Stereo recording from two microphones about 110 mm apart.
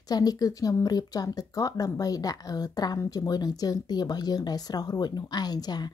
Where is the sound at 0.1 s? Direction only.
35° left (ahead or behind).